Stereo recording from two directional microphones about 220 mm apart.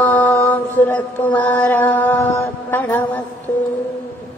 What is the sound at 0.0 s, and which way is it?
Mantra, 5° left (ahead or behind).